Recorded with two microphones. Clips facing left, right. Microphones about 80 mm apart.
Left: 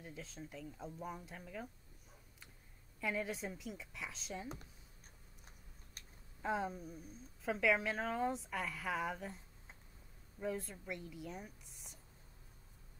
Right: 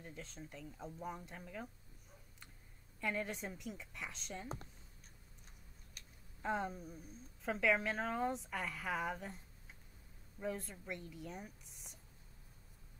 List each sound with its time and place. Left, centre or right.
0.0 s a woman's voice: centre
3.0 s a woman's voice: centre
6.0 s a sound: left
6.4 s a woman's voice: centre
10.4 s a woman's voice: centre